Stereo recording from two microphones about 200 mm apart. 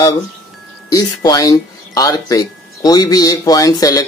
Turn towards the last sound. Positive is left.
turn(degrees=20)  # may be behind; listen again after turning